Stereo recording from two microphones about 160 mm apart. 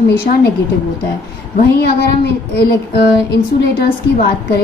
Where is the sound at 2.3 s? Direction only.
90° left.